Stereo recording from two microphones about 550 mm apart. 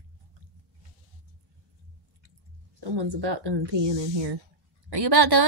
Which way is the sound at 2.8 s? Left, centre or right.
Right.